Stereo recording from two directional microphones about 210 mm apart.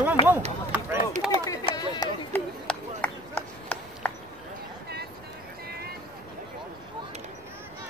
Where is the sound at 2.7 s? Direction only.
5° left (ahead or behind).